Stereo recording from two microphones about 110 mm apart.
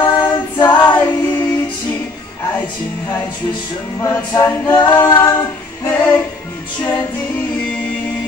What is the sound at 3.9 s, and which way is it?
A capella, 20° left (ahead or behind).